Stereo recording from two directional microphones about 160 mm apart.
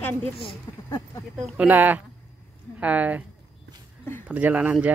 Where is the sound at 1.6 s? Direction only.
10° right (ahead or behind).